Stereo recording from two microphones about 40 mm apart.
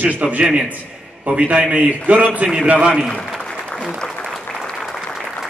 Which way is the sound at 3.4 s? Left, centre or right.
Left.